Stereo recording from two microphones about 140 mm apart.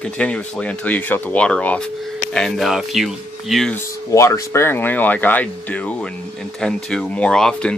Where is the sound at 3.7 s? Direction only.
25° left (ahead or behind); by 7.7 s 5° left (ahead or behind).